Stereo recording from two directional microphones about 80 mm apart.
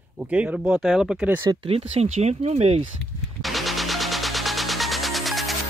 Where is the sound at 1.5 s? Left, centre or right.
Right.